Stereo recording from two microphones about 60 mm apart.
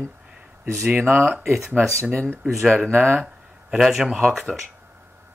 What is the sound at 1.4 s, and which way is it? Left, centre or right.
Speech, centre.